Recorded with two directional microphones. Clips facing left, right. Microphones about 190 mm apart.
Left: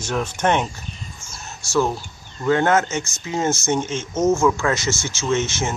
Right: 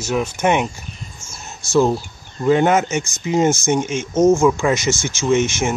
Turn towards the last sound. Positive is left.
turn(degrees=-15)  # may be behind; listen again after turning